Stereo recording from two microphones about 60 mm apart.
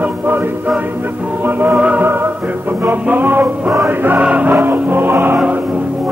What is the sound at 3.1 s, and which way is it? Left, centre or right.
Music, right.